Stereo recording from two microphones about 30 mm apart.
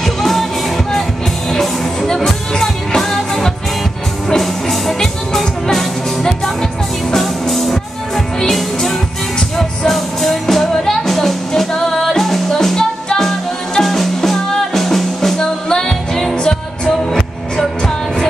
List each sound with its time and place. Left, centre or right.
0.0 s music: centre
7.2 s music: centre
15.3 s music: centre
17.1 s music: centre